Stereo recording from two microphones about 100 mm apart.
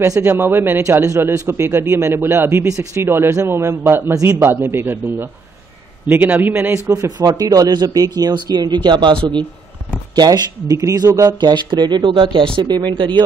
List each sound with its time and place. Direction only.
0.0 s a man's voice: 25° right (ahead or behind)
6.9 s speech: 40° right (ahead or behind); by 9.4 s 55° right (ahead or behind)
10.1 s speech: 40° right (ahead or behind)
11.3 s speech: 50° right (ahead or behind)
12.6 s speech: 45° right (ahead or behind)